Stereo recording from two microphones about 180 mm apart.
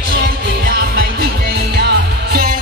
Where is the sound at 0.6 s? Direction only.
60° right (ahead or behind).